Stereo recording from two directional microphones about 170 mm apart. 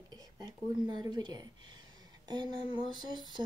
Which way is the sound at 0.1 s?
25° right (ahead or behind).